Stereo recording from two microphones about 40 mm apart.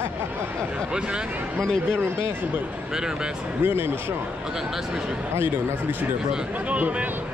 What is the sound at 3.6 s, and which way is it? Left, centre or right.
Speech, right.